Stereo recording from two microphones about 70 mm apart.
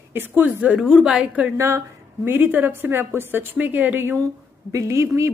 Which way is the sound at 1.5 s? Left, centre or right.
Right.